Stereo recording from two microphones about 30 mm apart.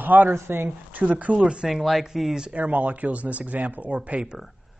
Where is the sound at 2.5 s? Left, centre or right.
Right.